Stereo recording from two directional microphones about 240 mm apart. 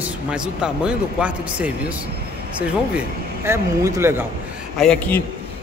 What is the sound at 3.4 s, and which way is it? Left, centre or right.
Speech, centre.